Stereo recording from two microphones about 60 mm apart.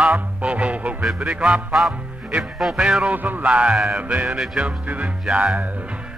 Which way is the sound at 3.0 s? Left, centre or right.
Right.